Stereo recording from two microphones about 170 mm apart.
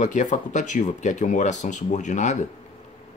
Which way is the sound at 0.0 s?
45° left (ahead or behind).